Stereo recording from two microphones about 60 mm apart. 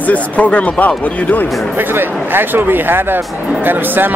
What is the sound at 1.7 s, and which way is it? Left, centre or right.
Speech, right.